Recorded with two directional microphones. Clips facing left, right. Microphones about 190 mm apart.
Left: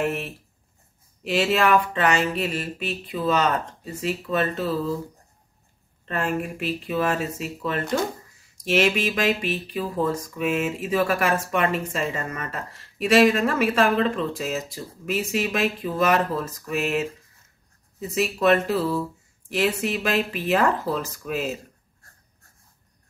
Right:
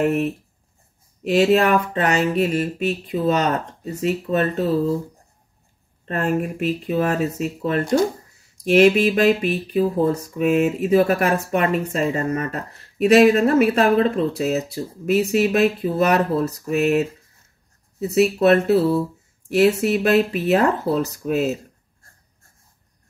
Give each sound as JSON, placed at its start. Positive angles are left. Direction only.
{"t": 0.0, "sound": "speech", "side_deg": -40}
{"t": 1.3, "sound": "speech", "side_deg": -40}
{"t": 6.0, "sound": "speech", "side_deg": -40}